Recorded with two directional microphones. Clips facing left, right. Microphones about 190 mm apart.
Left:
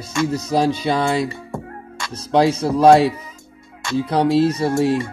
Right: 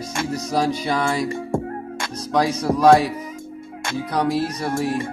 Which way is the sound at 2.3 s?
25° left (ahead or behind).